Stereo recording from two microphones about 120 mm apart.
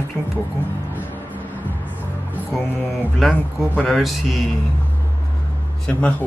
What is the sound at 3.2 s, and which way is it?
A man's voice, centre (ahead or behind).